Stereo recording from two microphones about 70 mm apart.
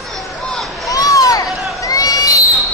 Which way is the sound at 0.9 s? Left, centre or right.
Left.